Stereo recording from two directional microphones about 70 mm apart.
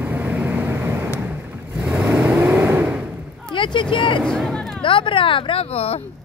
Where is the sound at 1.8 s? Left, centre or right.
Right.